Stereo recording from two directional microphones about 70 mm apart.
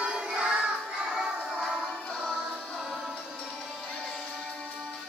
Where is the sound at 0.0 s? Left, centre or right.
Centre.